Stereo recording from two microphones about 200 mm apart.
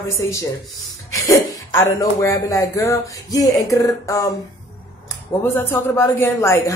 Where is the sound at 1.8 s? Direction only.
15° left (ahead or behind).